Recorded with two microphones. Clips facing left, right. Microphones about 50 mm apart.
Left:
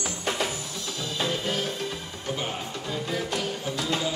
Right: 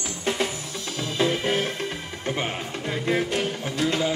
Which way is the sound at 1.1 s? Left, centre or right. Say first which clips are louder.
Right 5 dB; right.